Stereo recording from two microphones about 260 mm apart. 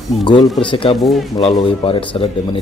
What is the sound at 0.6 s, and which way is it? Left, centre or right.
Speech, centre.